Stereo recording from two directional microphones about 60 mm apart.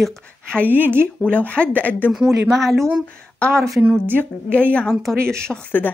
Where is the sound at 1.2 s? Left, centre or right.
Left.